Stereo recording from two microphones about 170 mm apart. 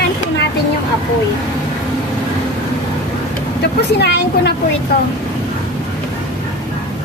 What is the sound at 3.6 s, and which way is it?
Speech, 75° left (ahead or behind).